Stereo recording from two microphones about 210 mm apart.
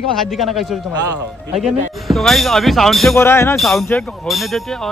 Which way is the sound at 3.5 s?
Centre (ahead or behind).